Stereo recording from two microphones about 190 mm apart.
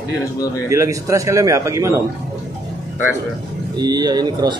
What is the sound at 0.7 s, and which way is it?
A man's voice, 15° right (ahead or behind).